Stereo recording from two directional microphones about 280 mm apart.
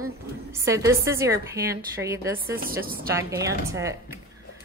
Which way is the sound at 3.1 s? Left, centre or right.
Centre.